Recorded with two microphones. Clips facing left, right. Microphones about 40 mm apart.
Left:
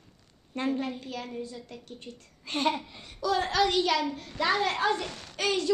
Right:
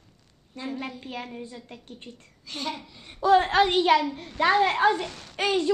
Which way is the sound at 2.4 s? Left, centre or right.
Left.